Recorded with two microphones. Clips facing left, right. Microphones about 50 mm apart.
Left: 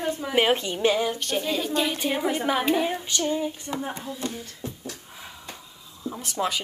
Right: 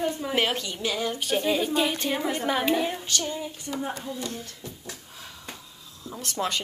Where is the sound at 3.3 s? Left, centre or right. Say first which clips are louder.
Left 5 dB; left.